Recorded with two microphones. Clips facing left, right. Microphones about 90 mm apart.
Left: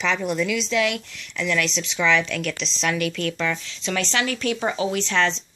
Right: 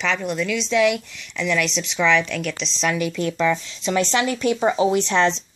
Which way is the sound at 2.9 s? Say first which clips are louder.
Right 2 dB; 10° right (ahead or behind).